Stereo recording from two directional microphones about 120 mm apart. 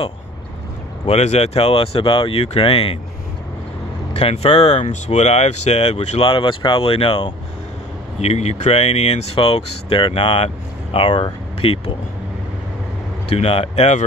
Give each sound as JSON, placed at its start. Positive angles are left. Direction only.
{"t": 1.0, "sound": "speech", "side_deg": 65}
{"t": 4.1, "sound": "speech", "side_deg": 60}
{"t": 8.2, "sound": "speech", "side_deg": 65}
{"t": 13.3, "sound": "speech", "side_deg": 55}